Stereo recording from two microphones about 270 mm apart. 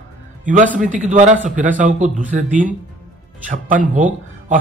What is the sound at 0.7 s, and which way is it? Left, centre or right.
Speech, right.